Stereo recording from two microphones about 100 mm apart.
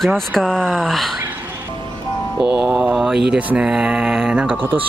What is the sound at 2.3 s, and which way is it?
Mantra, 5° right (ahead or behind).